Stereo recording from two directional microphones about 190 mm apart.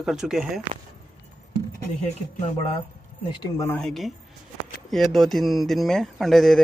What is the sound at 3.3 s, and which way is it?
Speech, 25° left (ahead or behind).